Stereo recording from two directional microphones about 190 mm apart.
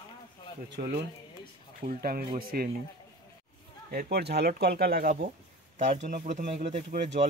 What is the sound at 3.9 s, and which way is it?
Speech, 55° right (ahead or behind).